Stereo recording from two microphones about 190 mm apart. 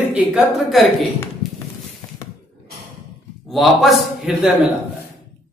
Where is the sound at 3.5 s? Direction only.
Centre (ahead or behind).